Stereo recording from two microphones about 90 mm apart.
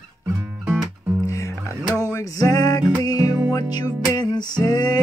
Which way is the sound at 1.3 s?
35° left (ahead or behind).